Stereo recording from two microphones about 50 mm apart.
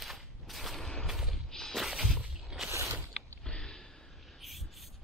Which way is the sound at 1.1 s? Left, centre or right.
Centre.